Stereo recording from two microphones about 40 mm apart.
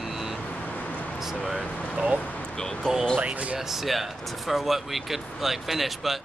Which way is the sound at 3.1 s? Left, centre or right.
Right.